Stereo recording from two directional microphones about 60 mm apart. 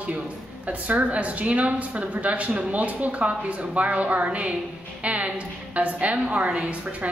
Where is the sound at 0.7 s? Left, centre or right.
Right.